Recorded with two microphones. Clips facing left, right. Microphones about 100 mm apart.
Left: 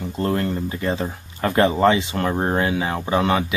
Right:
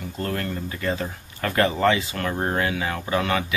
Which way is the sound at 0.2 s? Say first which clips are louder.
Left 6 dB; 25° left (ahead or behind).